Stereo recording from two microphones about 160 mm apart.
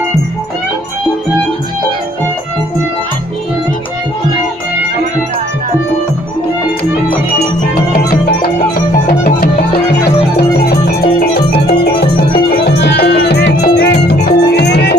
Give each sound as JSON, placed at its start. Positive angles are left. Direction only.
{"t": 9.0, "sound": "music", "side_deg": 65}
{"t": 10.6, "sound": "music", "side_deg": 80}
{"t": 12.6, "sound": "music", "side_deg": 90}